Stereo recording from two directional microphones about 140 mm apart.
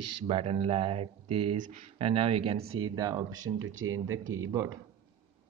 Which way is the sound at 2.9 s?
25° right (ahead or behind).